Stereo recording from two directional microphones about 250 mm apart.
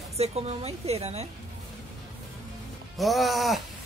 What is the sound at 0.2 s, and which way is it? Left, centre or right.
A woman's voice, right.